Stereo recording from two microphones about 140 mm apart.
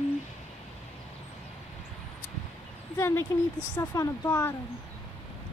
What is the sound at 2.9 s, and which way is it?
Speech, 20° left (ahead or behind).